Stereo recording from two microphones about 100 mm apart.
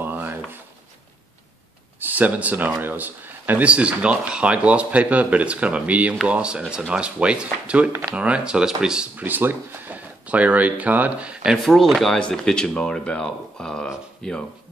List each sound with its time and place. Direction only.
0.0 s a sound: 20° right (ahead or behind)
2.0 s speech: 15° right (ahead or behind)
11.5 s speech: centre (ahead or behind)